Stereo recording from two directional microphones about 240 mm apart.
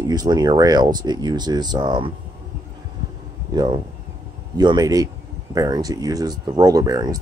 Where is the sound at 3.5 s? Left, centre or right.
Centre.